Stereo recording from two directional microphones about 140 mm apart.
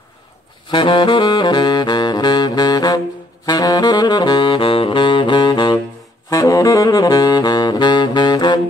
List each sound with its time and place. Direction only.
0.7 s saxophone: 35° left (ahead or behind)